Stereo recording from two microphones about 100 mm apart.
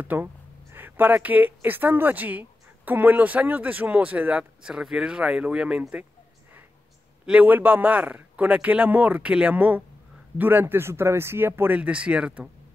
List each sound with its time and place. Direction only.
0.0 s a woman's voice: 20° right (ahead or behind)
7.2 s a woman's voice: 15° right (ahead or behind)